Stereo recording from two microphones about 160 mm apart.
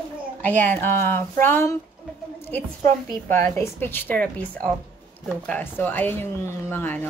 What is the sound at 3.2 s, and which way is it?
Speech, 15° left (ahead or behind).